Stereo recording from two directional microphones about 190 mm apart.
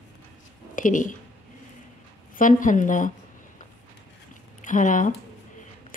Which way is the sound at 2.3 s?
45° left (ahead or behind).